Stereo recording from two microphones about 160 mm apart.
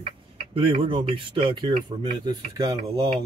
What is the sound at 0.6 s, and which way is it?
Speech, 35° right (ahead or behind).